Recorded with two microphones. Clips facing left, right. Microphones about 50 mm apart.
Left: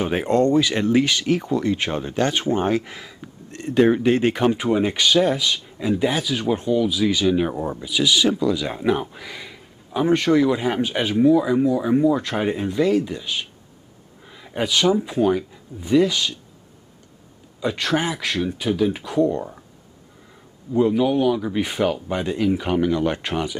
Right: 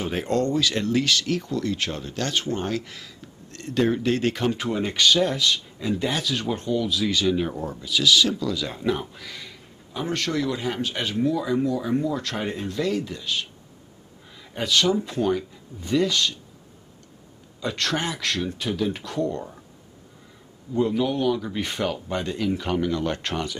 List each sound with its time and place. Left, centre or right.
0.0 s speech: left
7.4 s speech: left
17.6 s speech: centre
20.7 s speech: centre